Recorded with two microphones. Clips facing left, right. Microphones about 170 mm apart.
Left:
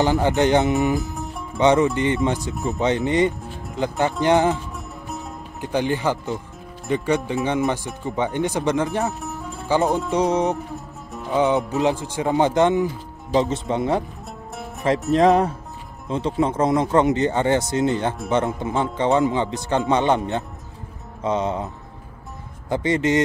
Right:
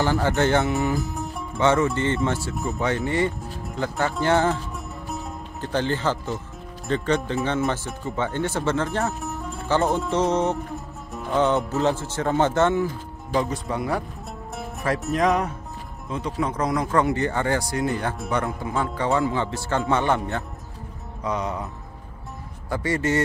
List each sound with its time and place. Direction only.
0.0 s speech: 20° left (ahead or behind)
0.9 s music: centre (ahead or behind)
1.6 s speech: 15° left (ahead or behind)
2.5 s speech: centre (ahead or behind)
2.8 s speech: 20° left (ahead or behind)
5.0 s music: centre (ahead or behind)
5.6 s speech: 15° left (ahead or behind)
9.2 s music: centre (ahead or behind)
9.8 s speech: centre (ahead or behind)
10.1 s speech: 10° left (ahead or behind)
10.7 s music: centre (ahead or behind)
11.3 s speech: 15° left (ahead or behind)
15.1 s speech: 30° left (ahead or behind)
22.7 s speech: 20° left (ahead or behind)